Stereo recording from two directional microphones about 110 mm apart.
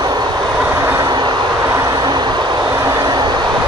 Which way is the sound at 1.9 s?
40° right (ahead or behind).